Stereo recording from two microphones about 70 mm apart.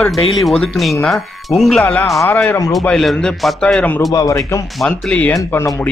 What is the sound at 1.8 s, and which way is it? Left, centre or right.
Speech, centre.